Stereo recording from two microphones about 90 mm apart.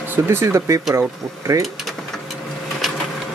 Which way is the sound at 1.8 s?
Centre (ahead or behind).